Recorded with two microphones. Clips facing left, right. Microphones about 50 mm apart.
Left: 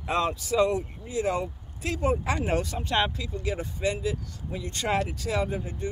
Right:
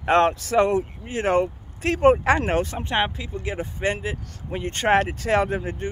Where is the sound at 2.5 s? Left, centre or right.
Right.